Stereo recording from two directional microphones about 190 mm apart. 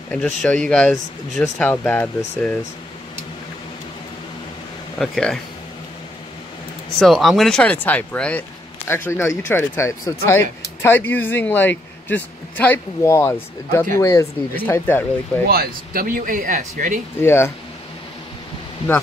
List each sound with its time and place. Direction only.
0.1 s speech: 5° left (ahead or behind)
4.9 s speech: 5° left (ahead or behind)
7.0 s speech: centre (ahead or behind)
15.4 s speech: 55° right (ahead or behind)
17.2 s speech: 15° left (ahead or behind)